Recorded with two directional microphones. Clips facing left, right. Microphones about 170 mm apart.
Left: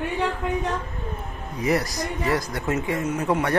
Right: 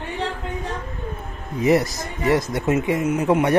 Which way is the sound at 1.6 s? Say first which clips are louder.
Right 5 dB; 25° right (ahead or behind).